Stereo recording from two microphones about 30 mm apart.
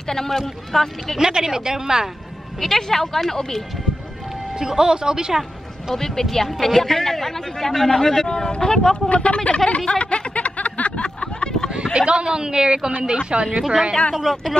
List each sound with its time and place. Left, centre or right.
0.1 s a man's voice: centre
1.2 s speech: right
2.6 s a man's voice: centre
4.6 s speech: right
5.9 s a man's voice: centre
9.1 s speech: left
10.3 s a sound: left
11.7 s speech: right
14.3 s speech: centre